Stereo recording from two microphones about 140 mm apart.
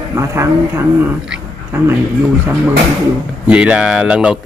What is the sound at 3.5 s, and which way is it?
Speech, 5° right (ahead or behind).